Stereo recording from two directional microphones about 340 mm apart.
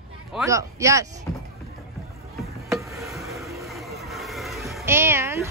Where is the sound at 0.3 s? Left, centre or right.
Centre.